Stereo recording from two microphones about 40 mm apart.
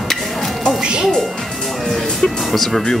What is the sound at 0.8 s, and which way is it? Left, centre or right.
Music, right.